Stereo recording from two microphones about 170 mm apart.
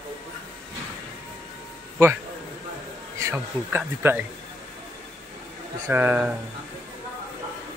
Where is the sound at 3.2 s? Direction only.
15° right (ahead or behind).